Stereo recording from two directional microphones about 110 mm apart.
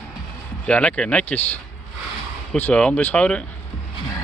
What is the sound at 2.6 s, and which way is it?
Speech, 10° left (ahead or behind).